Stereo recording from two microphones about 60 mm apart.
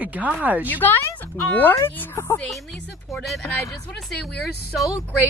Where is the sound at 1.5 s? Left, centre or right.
Left.